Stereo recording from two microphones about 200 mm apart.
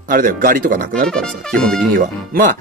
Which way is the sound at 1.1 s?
5° left (ahead or behind).